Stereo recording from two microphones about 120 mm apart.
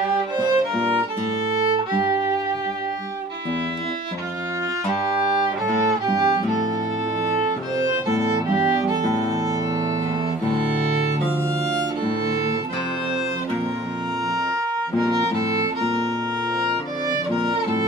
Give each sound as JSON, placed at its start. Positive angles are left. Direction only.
{"t": 5.9, "sound": "music", "side_deg": -30}
{"t": 8.1, "sound": "music", "side_deg": -20}
{"t": 15.0, "sound": "music", "side_deg": -30}